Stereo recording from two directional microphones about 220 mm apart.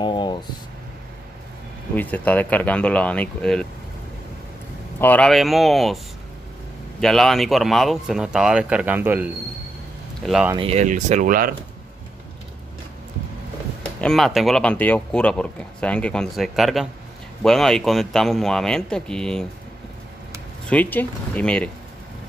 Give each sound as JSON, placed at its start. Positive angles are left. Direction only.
{"t": 0.0, "sound": "a sound", "side_deg": 20}
{"t": 2.0, "sound": "speech", "side_deg": 5}
{"t": 5.0, "sound": "speech", "side_deg": 5}
{"t": 7.0, "sound": "speech", "side_deg": 0}
{"t": 10.5, "sound": "speech", "side_deg": -25}
{"t": 14.0, "sound": "speech", "side_deg": 0}
{"t": 20.7, "sound": "speech", "side_deg": 10}